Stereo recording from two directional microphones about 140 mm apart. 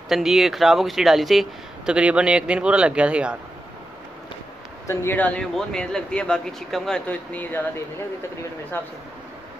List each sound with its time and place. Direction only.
0.1 s speech: centre (ahead or behind)
4.8 s speech: 15° left (ahead or behind)